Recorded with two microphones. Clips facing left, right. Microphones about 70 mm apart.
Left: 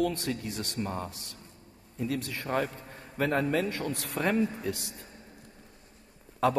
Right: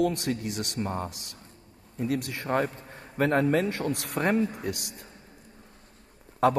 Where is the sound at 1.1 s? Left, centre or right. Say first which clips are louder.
Right 1 dB; right.